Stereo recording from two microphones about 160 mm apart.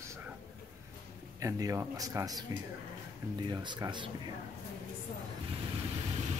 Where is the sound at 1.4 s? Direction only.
20° right (ahead or behind).